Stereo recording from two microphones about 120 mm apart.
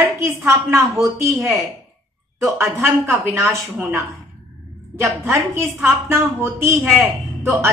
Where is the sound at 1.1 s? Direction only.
25° right (ahead or behind).